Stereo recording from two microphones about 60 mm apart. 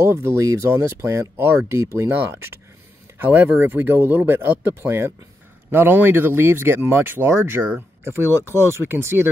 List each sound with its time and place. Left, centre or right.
0.0 s speech: right
3.2 s speech: right